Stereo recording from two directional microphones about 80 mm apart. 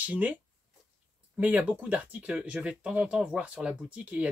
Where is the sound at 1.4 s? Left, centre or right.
Centre.